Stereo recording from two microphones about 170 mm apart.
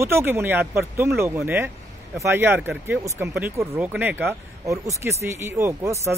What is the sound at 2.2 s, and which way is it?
Speech, 15° right (ahead or behind).